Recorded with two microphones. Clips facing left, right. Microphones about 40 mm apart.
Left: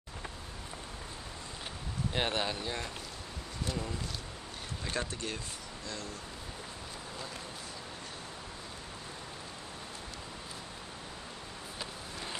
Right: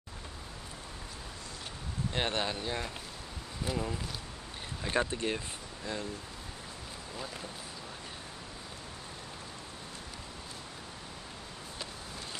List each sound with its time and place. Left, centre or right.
2.1 s speech: centre
4.9 s speech: right